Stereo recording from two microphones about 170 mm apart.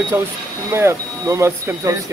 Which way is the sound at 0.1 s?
10° right (ahead or behind).